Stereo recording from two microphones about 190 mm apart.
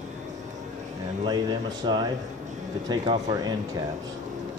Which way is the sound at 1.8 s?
25° right (ahead or behind).